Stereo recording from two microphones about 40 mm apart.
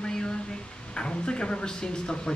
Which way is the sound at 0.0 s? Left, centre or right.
Left.